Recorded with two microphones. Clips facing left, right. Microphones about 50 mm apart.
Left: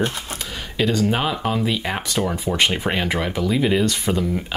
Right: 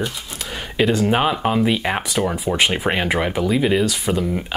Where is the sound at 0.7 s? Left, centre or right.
Right.